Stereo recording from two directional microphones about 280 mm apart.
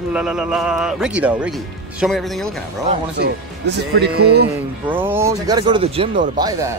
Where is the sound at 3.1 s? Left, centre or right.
Right.